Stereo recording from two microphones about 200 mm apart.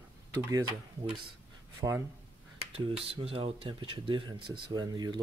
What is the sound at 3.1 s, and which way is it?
Speech, 25° right (ahead or behind).